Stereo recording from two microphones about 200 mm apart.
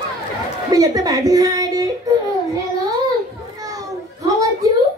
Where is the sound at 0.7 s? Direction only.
15° right (ahead or behind).